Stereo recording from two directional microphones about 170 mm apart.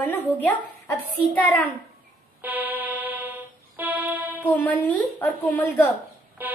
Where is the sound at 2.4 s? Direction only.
10° right (ahead or behind).